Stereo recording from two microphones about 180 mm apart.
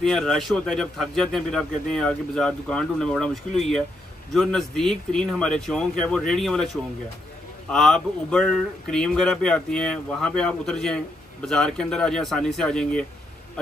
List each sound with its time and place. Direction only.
0.0 s a man's voice: centre (ahead or behind)